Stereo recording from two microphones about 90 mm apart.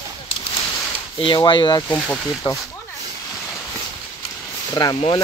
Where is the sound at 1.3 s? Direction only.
60° left (ahead or behind).